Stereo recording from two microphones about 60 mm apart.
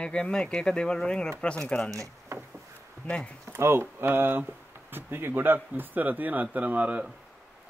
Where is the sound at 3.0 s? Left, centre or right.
Left.